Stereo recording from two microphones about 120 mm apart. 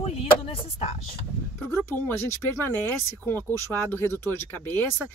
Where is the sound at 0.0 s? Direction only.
55° left (ahead or behind).